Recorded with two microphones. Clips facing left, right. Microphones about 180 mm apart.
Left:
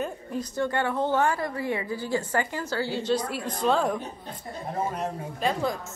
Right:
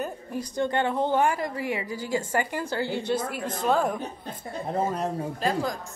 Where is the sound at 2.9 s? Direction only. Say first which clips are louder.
Left 1 dB; 55° right (ahead or behind).